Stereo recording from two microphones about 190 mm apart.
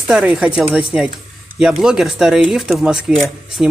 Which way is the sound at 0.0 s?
5° right (ahead or behind).